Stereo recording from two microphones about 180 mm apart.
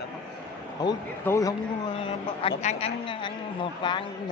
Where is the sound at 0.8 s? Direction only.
20° left (ahead or behind).